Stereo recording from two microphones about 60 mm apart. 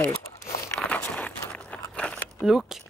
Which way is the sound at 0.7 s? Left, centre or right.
Left.